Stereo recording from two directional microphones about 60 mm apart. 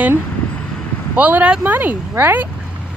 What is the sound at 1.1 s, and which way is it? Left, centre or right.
Speech, right.